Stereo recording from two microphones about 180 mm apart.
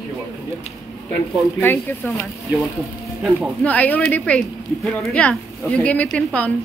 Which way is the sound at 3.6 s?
10° left (ahead or behind).